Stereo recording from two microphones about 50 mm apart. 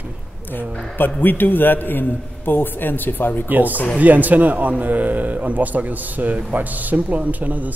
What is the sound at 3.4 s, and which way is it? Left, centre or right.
Speech, right.